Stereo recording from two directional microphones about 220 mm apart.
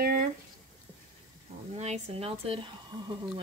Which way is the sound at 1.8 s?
30° right (ahead or behind).